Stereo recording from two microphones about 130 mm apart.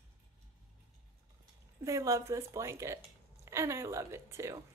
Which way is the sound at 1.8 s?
25° right (ahead or behind).